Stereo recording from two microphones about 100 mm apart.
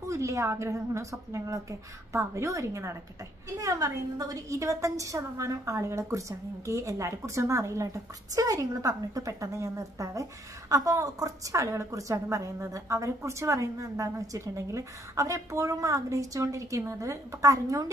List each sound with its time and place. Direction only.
0.0 s a woman's voice: 30° right (ahead or behind)